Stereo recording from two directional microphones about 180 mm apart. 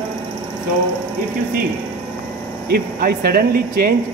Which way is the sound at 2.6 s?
60° right (ahead or behind).